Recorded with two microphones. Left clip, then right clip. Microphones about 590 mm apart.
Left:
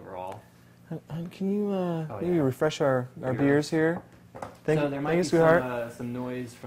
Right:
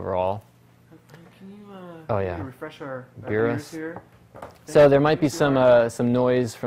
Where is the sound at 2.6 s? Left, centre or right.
Left.